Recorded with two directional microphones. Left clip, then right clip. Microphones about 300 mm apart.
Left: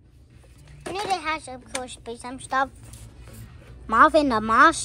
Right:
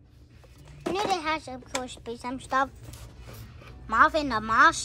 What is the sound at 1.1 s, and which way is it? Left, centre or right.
Speech, centre.